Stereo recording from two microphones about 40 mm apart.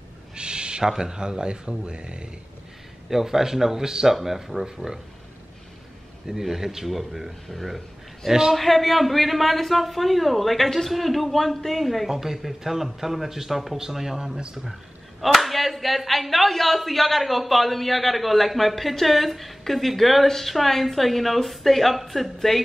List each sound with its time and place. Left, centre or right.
0.4 s owl: right
0.8 s speech: centre
3.1 s speech: centre
6.2 s speech: centre
8.3 s speech: centre
8.5 s speech: centre
12.1 s speech: centre